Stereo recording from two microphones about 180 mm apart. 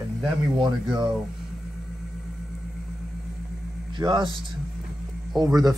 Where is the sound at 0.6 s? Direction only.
25° right (ahead or behind).